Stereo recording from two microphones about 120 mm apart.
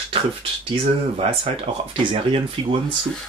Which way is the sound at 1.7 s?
50° right (ahead or behind).